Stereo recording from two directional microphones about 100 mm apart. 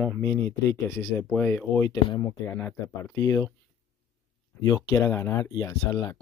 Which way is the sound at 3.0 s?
30° left (ahead or behind).